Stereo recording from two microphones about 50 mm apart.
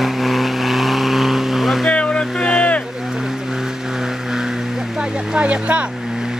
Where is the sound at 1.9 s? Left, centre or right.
Left.